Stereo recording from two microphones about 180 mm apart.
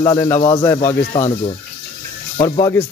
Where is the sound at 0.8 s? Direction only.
40° left (ahead or behind).